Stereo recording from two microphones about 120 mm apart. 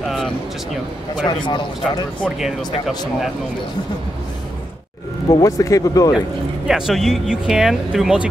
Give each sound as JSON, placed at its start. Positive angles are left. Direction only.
{"t": 0.0, "sound": "music", "side_deg": -5}
{"t": 1.2, "sound": "speech", "side_deg": 40}
{"t": 2.2, "sound": "speech", "side_deg": -5}
{"t": 5.3, "sound": "speech", "side_deg": 30}
{"t": 6.7, "sound": "speech", "side_deg": 0}